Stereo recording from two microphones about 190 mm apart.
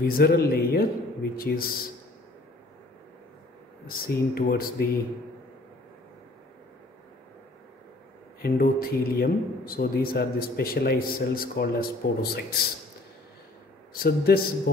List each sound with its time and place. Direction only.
0.0 s speech: 55° left (ahead or behind)
3.8 s speech: 55° left (ahead or behind)
8.4 s speech: 50° left (ahead or behind)
13.9 s speech: 55° left (ahead or behind)